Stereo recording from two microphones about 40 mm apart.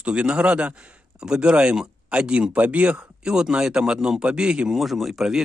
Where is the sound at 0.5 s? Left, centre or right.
Right.